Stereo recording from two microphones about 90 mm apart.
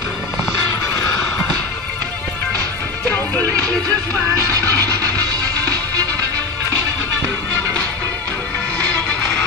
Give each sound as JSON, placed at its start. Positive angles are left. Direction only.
{"t": 3.6, "sound": "music", "side_deg": -40}